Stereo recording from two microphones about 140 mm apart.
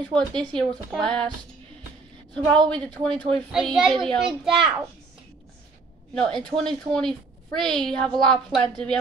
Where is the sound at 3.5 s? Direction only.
5° right (ahead or behind).